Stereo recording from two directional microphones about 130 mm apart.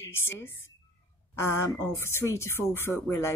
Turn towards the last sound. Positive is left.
turn(degrees=20)  # may be behind; listen again after turning